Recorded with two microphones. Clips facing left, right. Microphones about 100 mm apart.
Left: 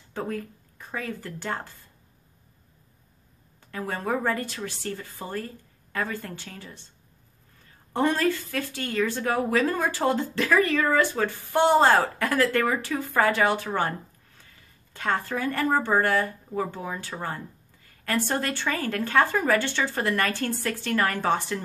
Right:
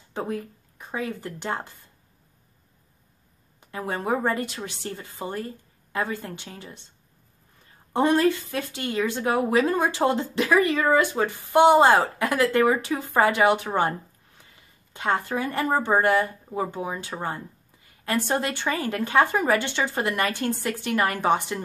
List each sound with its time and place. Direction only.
0.1 s speech: 20° right (ahead or behind)
3.7 s speech: 20° right (ahead or behind)
7.9 s speech: 20° right (ahead or behind)